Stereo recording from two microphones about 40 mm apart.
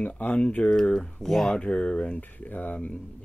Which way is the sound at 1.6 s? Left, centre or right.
Left.